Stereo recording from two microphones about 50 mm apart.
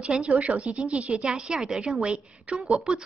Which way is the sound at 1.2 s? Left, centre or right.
Centre.